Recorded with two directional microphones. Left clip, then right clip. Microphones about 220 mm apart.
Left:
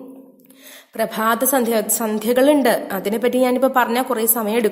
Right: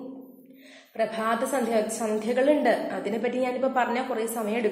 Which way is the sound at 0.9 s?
45° left (ahead or behind).